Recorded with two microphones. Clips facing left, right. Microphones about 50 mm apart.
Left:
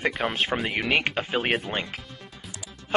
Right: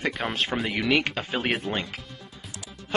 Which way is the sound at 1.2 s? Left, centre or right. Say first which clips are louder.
Left 1 dB; centre.